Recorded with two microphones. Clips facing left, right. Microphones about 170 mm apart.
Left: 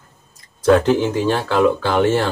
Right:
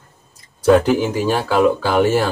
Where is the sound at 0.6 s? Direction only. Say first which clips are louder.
Right 1 dB; 10° right (ahead or behind).